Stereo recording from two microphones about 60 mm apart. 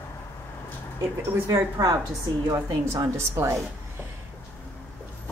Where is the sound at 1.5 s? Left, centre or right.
Right.